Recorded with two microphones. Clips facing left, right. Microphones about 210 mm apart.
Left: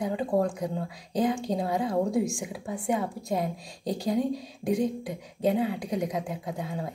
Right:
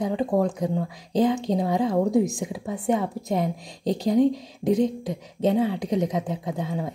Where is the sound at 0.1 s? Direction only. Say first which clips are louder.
Right 3 dB; 20° right (ahead or behind).